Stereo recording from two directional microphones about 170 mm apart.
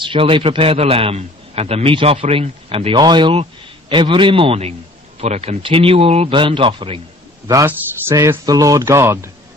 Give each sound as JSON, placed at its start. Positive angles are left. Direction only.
{"t": 0.0, "sound": "a man's voice", "side_deg": -30}
{"t": 7.6, "sound": "speech", "side_deg": -15}